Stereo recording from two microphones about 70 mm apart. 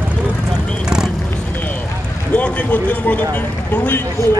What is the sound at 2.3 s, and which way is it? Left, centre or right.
A man's voice, left.